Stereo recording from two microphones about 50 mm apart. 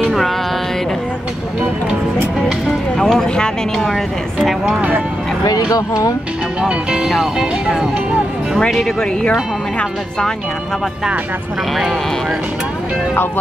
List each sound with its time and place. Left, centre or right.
3.0 s speech: centre
6.6 s speech: centre
9.2 s speech: centre